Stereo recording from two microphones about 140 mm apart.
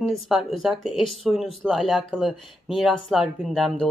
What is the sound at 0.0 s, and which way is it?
Speech, centre (ahead or behind).